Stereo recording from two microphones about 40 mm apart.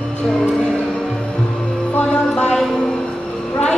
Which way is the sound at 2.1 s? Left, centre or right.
Left.